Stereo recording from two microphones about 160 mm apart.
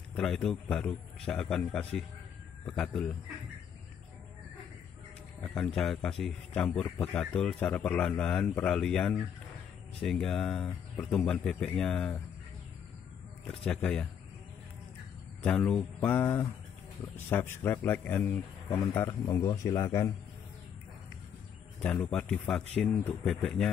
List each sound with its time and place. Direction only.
0.1 s a man's voice: 5° left (ahead or behind)
5.4 s a man's voice: 5° left (ahead or behind)
13.5 s a man's voice: 10° left (ahead or behind)
15.4 s a man's voice: 10° left (ahead or behind)
21.8 s a man's voice: 10° left (ahead or behind)